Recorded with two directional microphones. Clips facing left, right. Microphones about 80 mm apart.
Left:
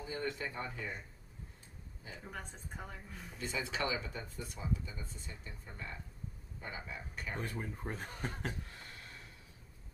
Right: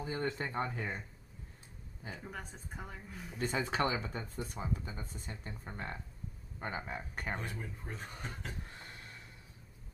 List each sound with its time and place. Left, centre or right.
0.0 s speech: right
2.2 s a woman's voice: centre
3.3 s speech: right
7.4 s speech: left